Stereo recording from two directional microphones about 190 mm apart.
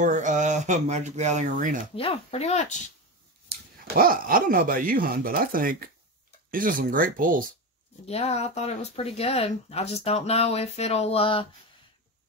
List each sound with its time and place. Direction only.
0.0 s speech: 40° right (ahead or behind)
2.0 s speech: 30° left (ahead or behind)
3.4 s speech: 55° right (ahead or behind)
8.1 s speech: 35° left (ahead or behind)